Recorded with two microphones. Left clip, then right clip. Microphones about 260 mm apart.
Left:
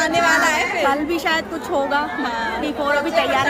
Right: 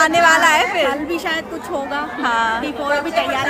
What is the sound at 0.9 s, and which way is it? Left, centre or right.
A woman's voice, centre.